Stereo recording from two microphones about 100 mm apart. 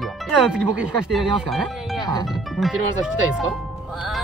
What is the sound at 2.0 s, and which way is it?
Music, 40° left (ahead or behind).